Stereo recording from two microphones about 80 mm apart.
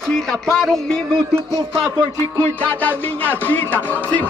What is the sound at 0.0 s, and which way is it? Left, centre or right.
Speech, centre.